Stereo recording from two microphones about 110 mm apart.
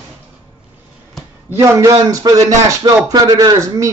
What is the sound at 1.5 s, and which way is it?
Speech, 25° right (ahead or behind).